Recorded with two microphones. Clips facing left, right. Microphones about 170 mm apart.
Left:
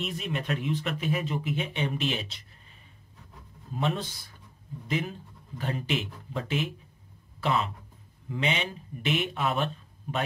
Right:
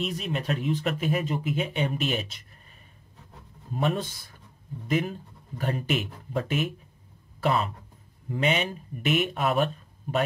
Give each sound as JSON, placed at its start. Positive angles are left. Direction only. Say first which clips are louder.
{"t": 0.0, "sound": "speech", "louder": "right 3 dB", "side_deg": -40}